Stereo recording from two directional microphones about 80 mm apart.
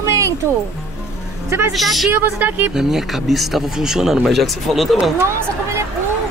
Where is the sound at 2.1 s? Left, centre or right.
Right.